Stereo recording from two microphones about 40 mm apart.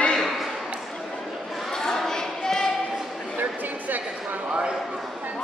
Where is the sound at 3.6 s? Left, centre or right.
Right.